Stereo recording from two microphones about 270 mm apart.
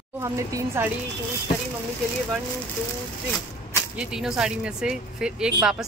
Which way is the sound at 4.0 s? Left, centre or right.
Centre.